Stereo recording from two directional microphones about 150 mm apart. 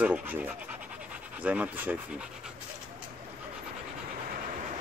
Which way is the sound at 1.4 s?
10° right (ahead or behind).